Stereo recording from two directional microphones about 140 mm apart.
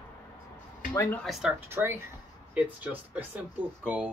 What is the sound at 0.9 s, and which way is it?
Speech, 15° left (ahead or behind).